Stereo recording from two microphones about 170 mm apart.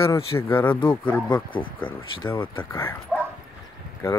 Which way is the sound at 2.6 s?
15° left (ahead or behind).